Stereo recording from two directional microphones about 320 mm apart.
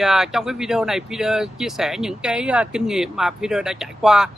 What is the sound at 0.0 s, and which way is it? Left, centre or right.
Speech, centre.